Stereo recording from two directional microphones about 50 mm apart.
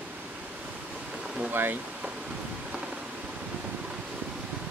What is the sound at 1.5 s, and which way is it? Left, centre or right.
Speech, right.